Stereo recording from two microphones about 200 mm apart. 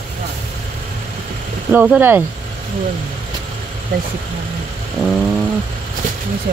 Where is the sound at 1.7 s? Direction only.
10° right (ahead or behind).